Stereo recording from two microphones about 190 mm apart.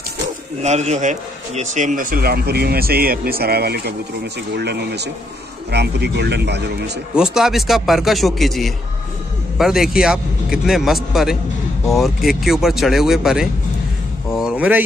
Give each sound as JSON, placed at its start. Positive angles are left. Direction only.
{"t": 0.6, "sound": "a man's voice", "side_deg": -35}
{"t": 7.2, "sound": "a man's voice", "side_deg": 0}
{"t": 14.3, "sound": "a sound", "side_deg": -5}